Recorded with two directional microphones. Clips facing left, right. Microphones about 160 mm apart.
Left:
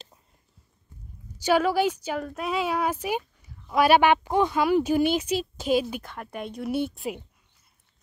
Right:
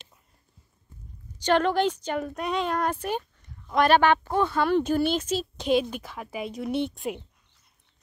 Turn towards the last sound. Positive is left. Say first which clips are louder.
# even
turn(degrees=0)  # may be behind; listen again after turning